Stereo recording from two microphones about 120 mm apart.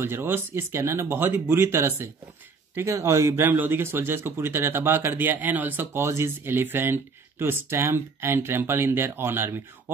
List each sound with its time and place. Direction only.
0.0 s speech: 20° right (ahead or behind)